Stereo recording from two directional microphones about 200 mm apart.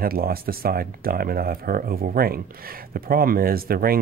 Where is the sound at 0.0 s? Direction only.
50° right (ahead or behind).